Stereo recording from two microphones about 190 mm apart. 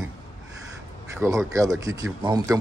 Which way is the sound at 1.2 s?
15° right (ahead or behind).